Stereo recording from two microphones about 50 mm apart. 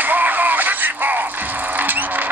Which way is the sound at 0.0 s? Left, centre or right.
Right.